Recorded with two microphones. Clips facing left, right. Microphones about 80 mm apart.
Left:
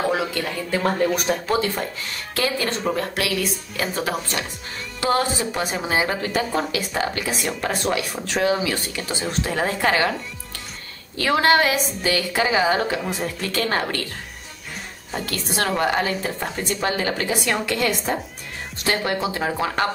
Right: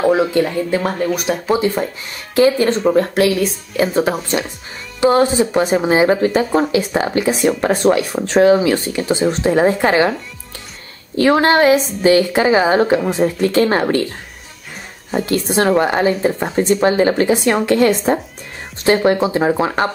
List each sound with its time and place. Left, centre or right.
0.3 s speech: right
0.9 s speech: centre
2.3 s speech: right
11.1 s speech: right
15.0 s a woman's voice: right